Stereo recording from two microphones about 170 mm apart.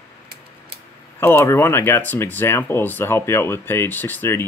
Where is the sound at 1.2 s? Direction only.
15° left (ahead or behind).